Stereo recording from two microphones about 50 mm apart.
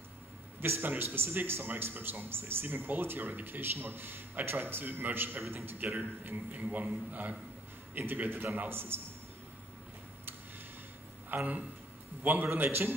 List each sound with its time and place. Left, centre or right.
0.7 s a man's voice: right
11.3 s a man's voice: right